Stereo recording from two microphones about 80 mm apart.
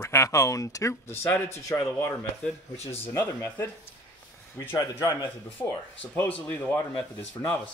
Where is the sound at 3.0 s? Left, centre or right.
Left.